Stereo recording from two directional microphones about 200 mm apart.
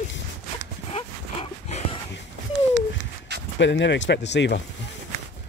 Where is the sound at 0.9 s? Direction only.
30° left (ahead or behind).